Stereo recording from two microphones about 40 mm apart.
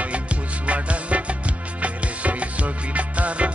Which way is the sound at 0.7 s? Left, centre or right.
Right.